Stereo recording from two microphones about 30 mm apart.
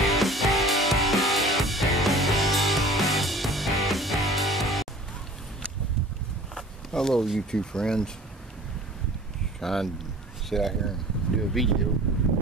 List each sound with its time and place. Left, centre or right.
0.0 s music: centre
6.9 s speech: centre
9.6 s speech: centre